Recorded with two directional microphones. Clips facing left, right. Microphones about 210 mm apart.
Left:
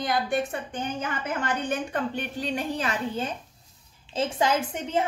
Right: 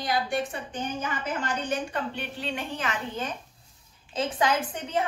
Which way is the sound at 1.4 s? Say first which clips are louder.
Left 2 dB; 50° left (ahead or behind).